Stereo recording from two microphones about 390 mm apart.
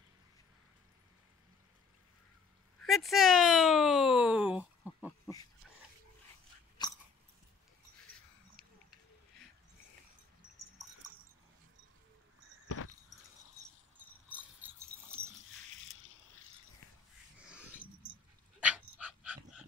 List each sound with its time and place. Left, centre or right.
2.8 s a sound: centre
12.6 s keys jangling: left
14.3 s dog: centre
17.5 s dog: centre